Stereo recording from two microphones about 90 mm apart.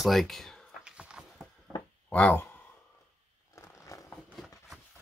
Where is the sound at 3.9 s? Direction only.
40° left (ahead or behind).